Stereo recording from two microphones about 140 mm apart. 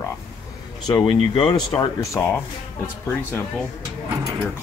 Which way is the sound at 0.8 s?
35° left (ahead or behind).